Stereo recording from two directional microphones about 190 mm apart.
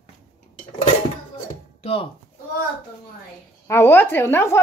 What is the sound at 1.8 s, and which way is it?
Speech, 30° left (ahead or behind).